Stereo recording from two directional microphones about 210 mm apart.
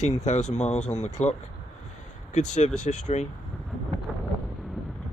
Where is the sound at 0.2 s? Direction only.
35° left (ahead or behind).